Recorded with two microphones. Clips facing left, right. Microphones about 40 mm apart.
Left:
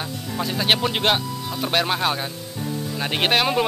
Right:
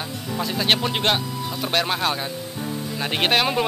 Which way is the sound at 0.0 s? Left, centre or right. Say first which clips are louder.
Even; centre.